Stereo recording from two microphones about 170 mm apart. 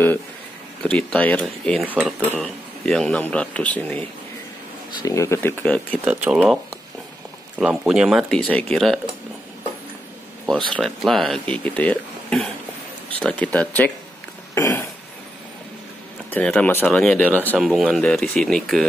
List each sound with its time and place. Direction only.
0.8 s speech: 5° left (ahead or behind)
1.8 s speech: 10° right (ahead or behind)
2.3 s speech: 5° left (ahead or behind)
5.0 s speech: 20° left (ahead or behind)
6.0 s speech: 10° right (ahead or behind)
10.7 s speech: centre (ahead or behind)
14.5 s a sound: 15° left (ahead or behind)
16.3 s speech: 5° left (ahead or behind)
17.6 s speech: 5° right (ahead or behind)